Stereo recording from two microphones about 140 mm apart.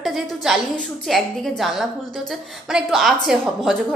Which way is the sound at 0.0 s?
Centre (ahead or behind).